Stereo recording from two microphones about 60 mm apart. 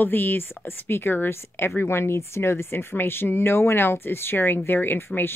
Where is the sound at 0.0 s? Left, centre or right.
Left.